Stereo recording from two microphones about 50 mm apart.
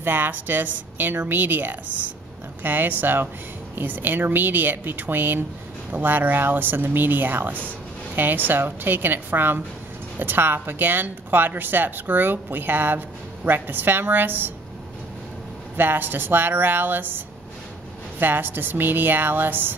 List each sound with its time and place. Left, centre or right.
0.0 s a woman's voice: right
15.7 s a woman's voice: right
18.2 s a woman's voice: right